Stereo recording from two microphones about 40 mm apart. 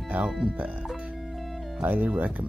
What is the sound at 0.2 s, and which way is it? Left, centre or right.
Speech, centre.